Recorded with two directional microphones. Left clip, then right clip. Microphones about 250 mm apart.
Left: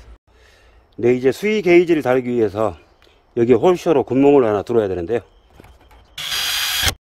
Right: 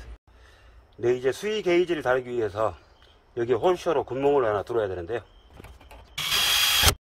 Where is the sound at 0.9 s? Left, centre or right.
Left.